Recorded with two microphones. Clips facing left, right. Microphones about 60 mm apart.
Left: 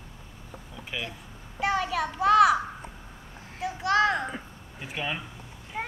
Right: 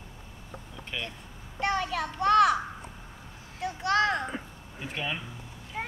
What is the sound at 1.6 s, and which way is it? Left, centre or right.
Speech, centre.